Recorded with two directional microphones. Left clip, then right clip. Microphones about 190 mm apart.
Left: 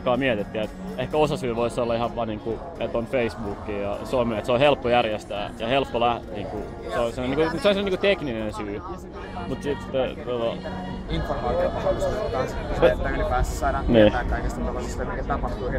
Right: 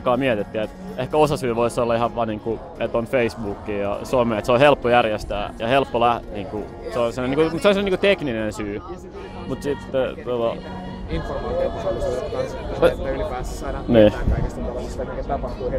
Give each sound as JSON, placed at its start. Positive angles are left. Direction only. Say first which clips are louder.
{"t": 0.0, "sound": "speech", "louder": "right 3 dB", "side_deg": -25}
{"t": 9.7, "sound": "speech", "louder": "right 3 dB", "side_deg": -25}
{"t": 11.1, "sound": "speech", "louder": "even", "side_deg": 10}